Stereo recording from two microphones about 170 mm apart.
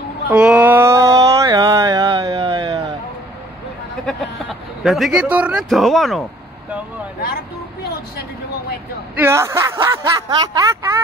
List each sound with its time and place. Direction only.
0.3 s a sound: 10° right (ahead or behind); by 2.8 s 30° right (ahead or behind)
4.0 s speech: centre (ahead or behind)
9.1 s speech: 15° right (ahead or behind)